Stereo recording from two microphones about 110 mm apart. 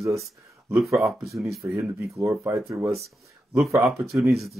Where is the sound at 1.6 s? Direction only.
25° right (ahead or behind).